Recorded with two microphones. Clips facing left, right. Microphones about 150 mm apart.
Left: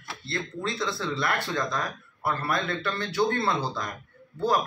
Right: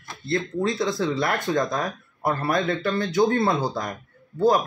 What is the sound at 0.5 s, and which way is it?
Speech, 45° right (ahead or behind).